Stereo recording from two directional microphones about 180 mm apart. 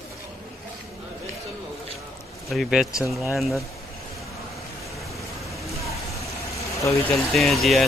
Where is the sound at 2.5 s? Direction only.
Centre (ahead or behind).